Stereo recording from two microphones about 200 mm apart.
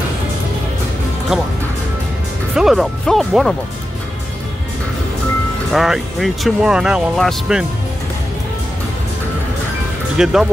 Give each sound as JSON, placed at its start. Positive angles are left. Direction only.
{"t": 1.3, "sound": "speech", "side_deg": -5}
{"t": 2.5, "sound": "speech", "side_deg": 0}
{"t": 5.7, "sound": "speech", "side_deg": 0}
{"t": 10.1, "sound": "speech", "side_deg": -5}